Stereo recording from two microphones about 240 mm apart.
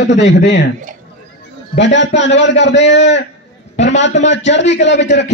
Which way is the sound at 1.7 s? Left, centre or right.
Left.